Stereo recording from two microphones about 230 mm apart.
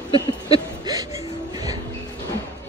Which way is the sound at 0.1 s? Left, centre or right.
Left.